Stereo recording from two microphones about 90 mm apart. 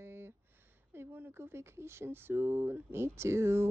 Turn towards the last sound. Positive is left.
turn(degrees=-30)  # may be behind; listen again after turning